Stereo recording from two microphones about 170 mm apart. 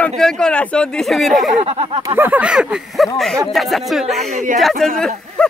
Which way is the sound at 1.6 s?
35° right (ahead or behind).